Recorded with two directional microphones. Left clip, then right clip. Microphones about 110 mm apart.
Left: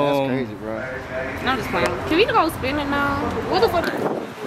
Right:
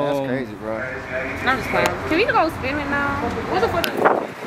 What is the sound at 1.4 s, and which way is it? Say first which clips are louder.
Speech: right 2 dB; centre (ahead or behind).